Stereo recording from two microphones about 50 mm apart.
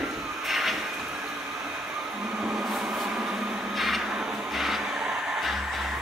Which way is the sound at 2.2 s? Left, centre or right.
Centre.